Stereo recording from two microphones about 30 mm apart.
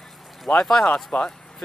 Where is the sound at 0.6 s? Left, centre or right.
Left.